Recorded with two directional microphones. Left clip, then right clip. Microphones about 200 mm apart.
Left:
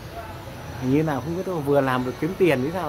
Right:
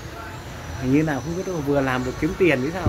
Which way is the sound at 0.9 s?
15° left (ahead or behind).